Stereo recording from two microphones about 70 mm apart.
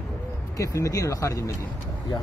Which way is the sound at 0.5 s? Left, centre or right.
Left.